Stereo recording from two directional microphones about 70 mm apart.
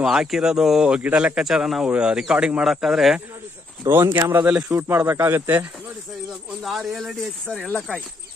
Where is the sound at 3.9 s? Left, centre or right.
Right.